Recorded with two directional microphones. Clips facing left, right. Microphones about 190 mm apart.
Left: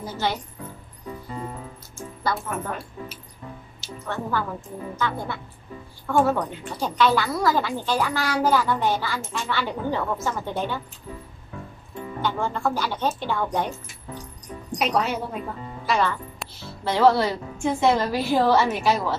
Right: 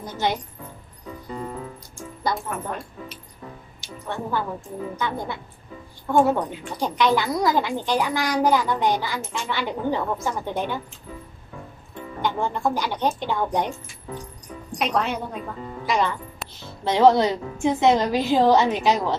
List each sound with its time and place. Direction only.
0.2 s a child's voice: 20° right (ahead or behind)
2.3 s speech: centre (ahead or behind)
3.8 s a woman's voice: 15° right (ahead or behind)
12.2 s a child's voice: 15° right (ahead or behind)
14.8 s speech: 5° left (ahead or behind)
15.8 s a child's voice: 15° right (ahead or behind)